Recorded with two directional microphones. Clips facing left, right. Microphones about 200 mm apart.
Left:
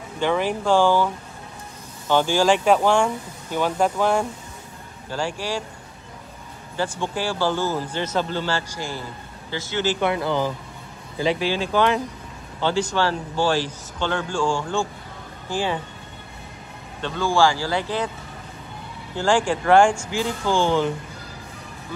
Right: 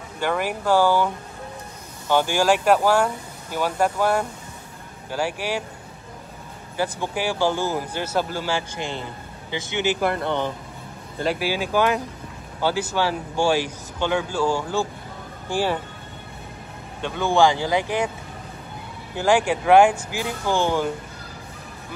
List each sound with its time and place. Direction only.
0.2 s speech: 10° right (ahead or behind)
6.8 s speech: 10° right (ahead or behind)
9.9 s speech: centre (ahead or behind)
17.0 s speech: 15° right (ahead or behind)
19.1 s speech: 10° right (ahead or behind)